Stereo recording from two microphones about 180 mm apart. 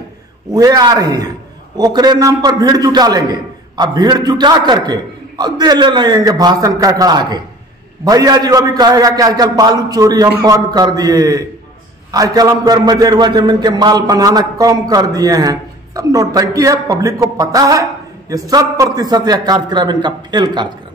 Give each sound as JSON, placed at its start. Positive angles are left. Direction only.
{"t": 0.5, "sound": "a man's voice", "side_deg": -20}